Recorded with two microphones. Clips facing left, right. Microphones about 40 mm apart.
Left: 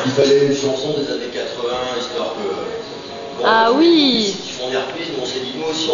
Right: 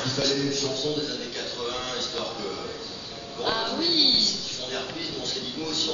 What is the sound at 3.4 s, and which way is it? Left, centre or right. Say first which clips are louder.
Speech: left 15 dB; left.